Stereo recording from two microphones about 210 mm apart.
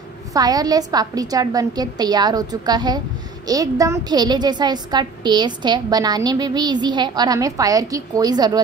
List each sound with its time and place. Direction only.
0.3 s a woman's voice: 20° right (ahead or behind)